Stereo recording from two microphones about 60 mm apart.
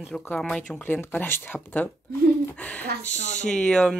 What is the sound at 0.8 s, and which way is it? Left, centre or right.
Speech, left.